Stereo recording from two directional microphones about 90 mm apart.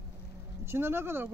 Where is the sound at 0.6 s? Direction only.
25° right (ahead or behind).